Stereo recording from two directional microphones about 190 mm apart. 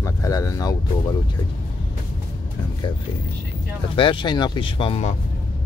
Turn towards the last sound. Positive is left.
turn(degrees=30)  # may be behind; listen again after turning